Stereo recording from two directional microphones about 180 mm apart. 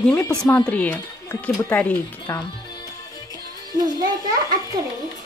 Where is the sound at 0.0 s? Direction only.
10° left (ahead or behind).